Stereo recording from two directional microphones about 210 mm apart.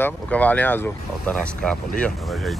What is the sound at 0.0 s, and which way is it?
Speech, 5° left (ahead or behind).